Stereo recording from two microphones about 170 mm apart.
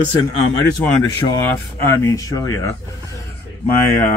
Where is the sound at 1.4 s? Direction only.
15° left (ahead or behind).